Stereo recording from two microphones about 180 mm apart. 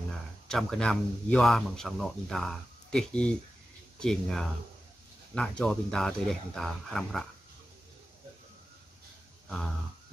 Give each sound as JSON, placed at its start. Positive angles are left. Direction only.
{"t": 0.5, "sound": "speech", "side_deg": 5}